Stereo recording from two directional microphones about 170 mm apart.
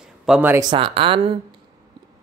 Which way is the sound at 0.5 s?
25° right (ahead or behind).